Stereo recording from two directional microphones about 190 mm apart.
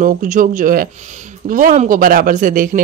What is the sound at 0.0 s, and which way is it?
Speech, 45° right (ahead or behind).